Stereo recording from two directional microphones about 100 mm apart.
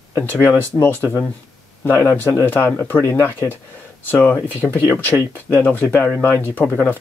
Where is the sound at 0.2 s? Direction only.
20° left (ahead or behind).